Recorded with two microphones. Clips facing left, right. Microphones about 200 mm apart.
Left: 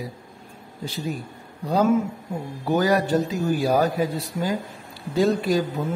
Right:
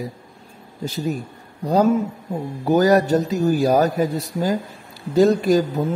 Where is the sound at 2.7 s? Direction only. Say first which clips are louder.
Right 5 dB; 40° right (ahead or behind).